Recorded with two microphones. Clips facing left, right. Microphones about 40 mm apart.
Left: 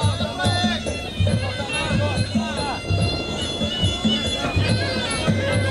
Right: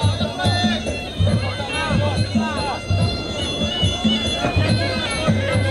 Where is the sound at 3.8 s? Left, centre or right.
Right.